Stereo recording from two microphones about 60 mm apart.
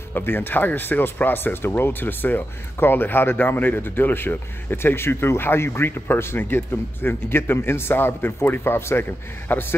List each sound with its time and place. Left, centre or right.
0.1 s speech: left